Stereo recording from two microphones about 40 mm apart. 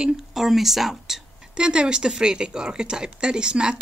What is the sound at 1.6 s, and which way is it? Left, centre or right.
Speech, right.